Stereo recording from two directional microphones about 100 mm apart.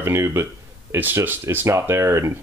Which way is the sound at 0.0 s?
25° right (ahead or behind).